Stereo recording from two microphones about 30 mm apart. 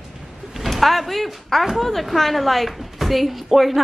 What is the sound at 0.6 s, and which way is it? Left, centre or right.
A woman's voice, centre.